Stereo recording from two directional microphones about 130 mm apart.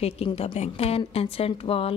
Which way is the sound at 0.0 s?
50° left (ahead or behind).